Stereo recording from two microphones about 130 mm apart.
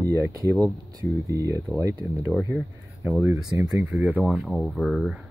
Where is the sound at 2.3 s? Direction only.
5° left (ahead or behind).